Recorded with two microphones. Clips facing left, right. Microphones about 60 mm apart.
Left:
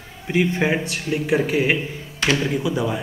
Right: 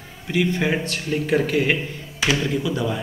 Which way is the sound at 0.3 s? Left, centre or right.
Left.